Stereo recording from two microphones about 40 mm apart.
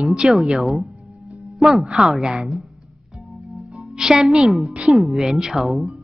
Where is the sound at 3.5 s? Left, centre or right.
Right.